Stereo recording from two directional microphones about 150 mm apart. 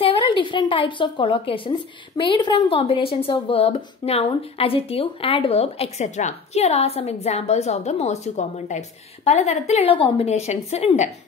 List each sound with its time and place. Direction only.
0.0 s a woman's voice: 35° left (ahead or behind)